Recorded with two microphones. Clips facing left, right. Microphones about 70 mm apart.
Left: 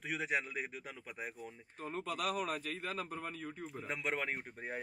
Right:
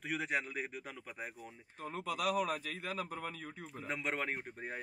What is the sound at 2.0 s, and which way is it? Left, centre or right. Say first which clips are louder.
A man's voice: right 3 dB; left.